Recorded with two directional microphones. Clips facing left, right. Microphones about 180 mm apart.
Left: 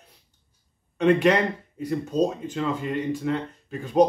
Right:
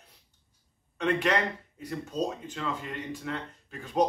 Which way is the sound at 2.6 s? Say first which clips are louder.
Left 10 dB; 15° left (ahead or behind).